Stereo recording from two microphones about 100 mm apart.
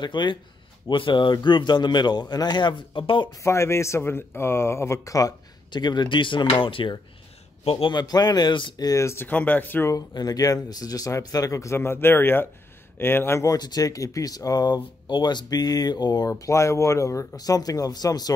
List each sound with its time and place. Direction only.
0.0 s speech: 50° left (ahead or behind)
3.4 s speech: 25° left (ahead or behind)
5.7 s speech: 45° left (ahead or behind)
7.6 s a man's voice: 70° left (ahead or behind)
7.9 s speech: 45° left (ahead or behind); by 9.9 s 20° left (ahead or behind)
9.9 s speech: 40° left (ahead or behind); by 13.5 s 25° left (ahead or behind)
13.5 s speech: 40° left (ahead or behind)